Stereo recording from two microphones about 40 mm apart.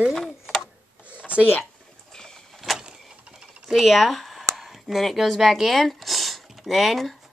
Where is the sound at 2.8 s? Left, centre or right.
Right.